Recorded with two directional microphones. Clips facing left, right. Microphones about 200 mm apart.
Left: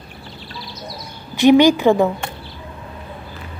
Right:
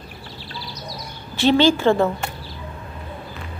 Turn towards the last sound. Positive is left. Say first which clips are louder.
# left 4 dB
turn(degrees=15)  # may be behind; listen again after turning